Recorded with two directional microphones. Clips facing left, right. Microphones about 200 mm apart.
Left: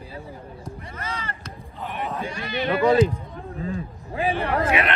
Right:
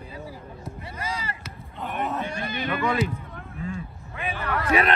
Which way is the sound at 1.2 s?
10° right (ahead or behind).